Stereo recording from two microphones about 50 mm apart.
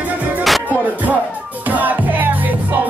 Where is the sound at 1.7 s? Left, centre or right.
Right.